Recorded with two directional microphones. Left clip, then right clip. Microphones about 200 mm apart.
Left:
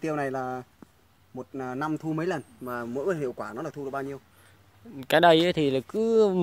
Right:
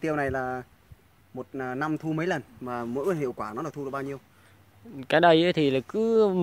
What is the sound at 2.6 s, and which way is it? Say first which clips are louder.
Speech: right 1 dB; 45° right (ahead or behind).